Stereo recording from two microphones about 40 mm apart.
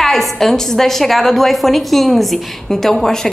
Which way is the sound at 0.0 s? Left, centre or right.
Centre.